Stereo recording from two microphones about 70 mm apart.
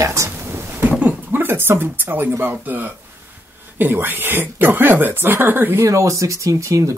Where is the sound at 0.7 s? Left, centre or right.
Right.